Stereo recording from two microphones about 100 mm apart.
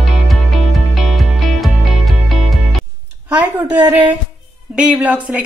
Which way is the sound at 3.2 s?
15° right (ahead or behind).